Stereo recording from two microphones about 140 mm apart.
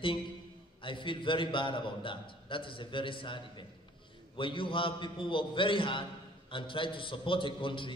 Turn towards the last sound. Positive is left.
turn(degrees=35)  # may be behind; listen again after turning